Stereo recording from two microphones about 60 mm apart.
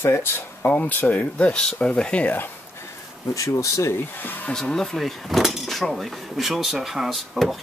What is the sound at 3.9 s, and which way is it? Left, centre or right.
Speech, left.